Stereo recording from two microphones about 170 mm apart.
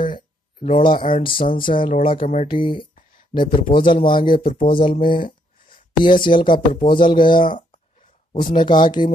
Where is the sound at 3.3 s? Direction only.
50° left (ahead or behind).